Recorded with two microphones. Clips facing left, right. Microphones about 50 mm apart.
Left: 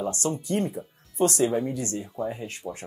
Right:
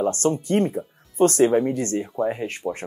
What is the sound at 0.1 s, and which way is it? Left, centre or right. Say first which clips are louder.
Speech: right 6 dB; right.